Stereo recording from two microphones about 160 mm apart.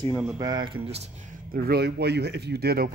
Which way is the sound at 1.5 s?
70° right (ahead or behind).